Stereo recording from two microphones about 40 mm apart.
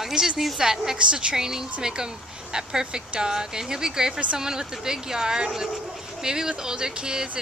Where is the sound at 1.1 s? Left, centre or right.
Right.